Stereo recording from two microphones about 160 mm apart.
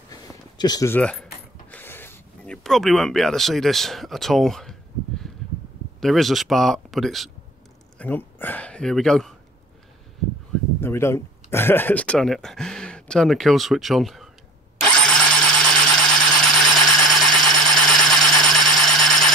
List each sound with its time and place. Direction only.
0.1 s a sound: 25° left (ahead or behind)
0.9 s keys jangling: 5° left (ahead or behind)
5.9 s speech: centre (ahead or behind)
8.0 s speech: 10° left (ahead or behind)
10.8 s speech: 15° left (ahead or behind); by 14.3 s centre (ahead or behind)
14.8 s engine starting: 5° left (ahead or behind)
16.3 s engine: centre (ahead or behind)